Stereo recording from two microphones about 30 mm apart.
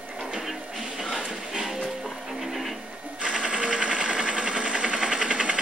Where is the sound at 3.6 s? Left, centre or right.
Right.